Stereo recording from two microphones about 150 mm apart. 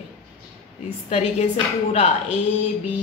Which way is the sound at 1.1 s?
45° left (ahead or behind).